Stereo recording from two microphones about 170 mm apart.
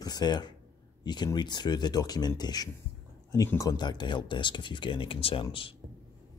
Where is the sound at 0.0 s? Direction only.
25° left (ahead or behind).